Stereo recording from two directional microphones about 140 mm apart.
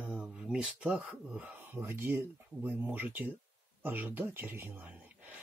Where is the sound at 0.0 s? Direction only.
10° right (ahead or behind).